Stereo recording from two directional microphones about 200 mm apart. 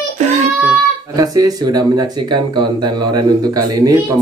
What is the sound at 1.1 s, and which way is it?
Speech, 20° right (ahead or behind).